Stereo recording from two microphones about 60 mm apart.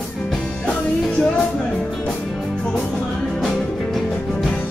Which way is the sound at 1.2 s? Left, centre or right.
Centre.